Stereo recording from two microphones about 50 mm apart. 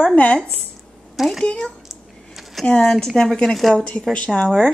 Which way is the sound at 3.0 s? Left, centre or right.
Centre.